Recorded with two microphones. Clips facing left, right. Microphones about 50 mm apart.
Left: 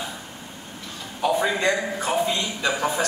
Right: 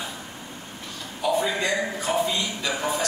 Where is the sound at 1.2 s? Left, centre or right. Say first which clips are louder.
Left 2 dB; left.